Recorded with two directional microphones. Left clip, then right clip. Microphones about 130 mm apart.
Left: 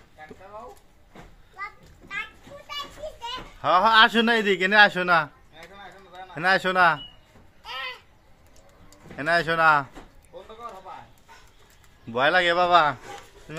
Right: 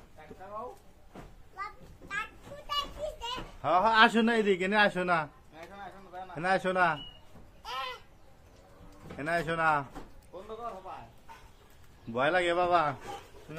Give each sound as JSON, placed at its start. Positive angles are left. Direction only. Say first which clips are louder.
{"t": 1.6, "sound": "children playing", "louder": "left 4 dB", "side_deg": -35}
{"t": 3.6, "sound": "a man's voice", "louder": "left 6 dB", "side_deg": 50}
{"t": 6.3, "sound": "speech", "louder": "left 7 dB", "side_deg": 35}
{"t": 7.6, "sound": "a sound", "louder": "left 3 dB", "side_deg": -30}
{"t": 9.2, "sound": "speech", "louder": "left 9 dB", "side_deg": 40}
{"t": 12.1, "sound": "a man's voice", "louder": "left 7 dB", "side_deg": 50}
{"t": 13.5, "sound": "speech", "louder": "left 7 dB", "side_deg": 90}